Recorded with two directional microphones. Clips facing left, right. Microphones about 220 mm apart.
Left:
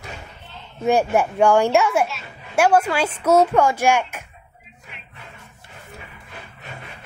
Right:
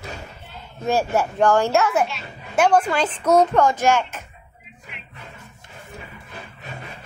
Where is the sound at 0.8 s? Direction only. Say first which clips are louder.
Left 3 dB; 15° left (ahead or behind).